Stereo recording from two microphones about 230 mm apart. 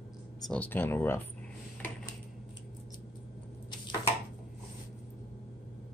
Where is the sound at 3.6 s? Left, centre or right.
Centre.